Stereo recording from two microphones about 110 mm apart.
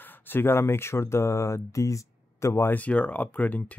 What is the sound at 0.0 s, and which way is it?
Speech, 20° left (ahead or behind).